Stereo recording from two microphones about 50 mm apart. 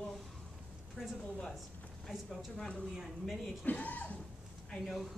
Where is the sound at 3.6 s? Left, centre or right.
Left.